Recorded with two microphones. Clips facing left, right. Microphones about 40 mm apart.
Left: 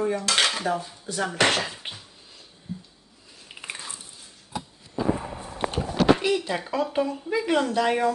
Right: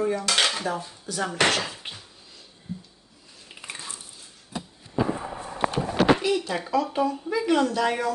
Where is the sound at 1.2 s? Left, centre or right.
Centre.